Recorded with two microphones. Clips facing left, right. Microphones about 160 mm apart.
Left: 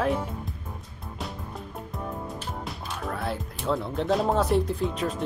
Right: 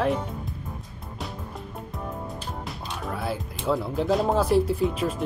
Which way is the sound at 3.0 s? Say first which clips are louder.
Right 1 dB; centre (ahead or behind).